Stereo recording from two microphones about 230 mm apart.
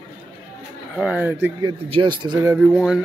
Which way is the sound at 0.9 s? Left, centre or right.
Centre.